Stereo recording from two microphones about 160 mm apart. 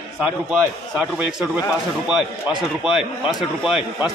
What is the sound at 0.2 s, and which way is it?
A man's voice, 5° right (ahead or behind).